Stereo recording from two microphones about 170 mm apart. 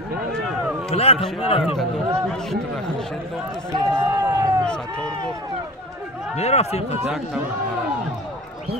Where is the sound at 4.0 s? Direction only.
15° right (ahead or behind).